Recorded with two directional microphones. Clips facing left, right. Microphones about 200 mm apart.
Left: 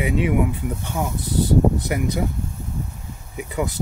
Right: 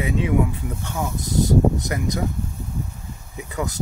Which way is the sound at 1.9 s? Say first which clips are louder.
Left 3 dB; 15° left (ahead or behind).